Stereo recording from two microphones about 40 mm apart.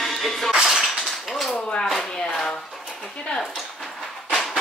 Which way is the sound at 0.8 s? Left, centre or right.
Centre.